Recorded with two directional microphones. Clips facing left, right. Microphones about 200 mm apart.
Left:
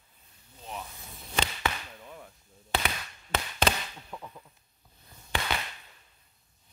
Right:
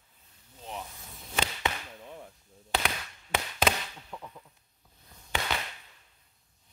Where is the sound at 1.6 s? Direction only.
20° right (ahead or behind).